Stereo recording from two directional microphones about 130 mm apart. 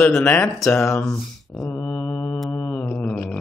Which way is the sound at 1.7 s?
10° left (ahead or behind).